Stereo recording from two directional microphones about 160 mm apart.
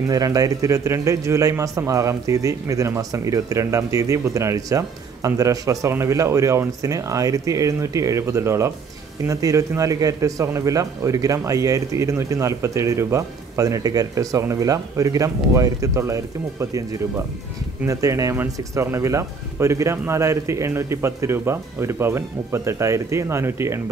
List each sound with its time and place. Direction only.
0.1 s a man's voice: 20° right (ahead or behind)
17.8 s speech: 20° right (ahead or behind)